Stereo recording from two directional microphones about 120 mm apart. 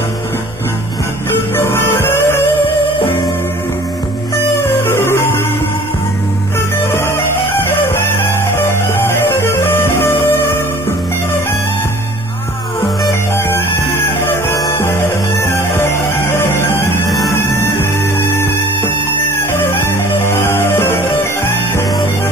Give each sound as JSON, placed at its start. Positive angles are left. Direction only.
{"t": 1.7, "sound": "music", "side_deg": 20}
{"t": 4.8, "sound": "music", "side_deg": 20}
{"t": 8.9, "sound": "music", "side_deg": 20}
{"t": 13.5, "sound": "music", "side_deg": 20}
{"t": 19.7, "sound": "music", "side_deg": 20}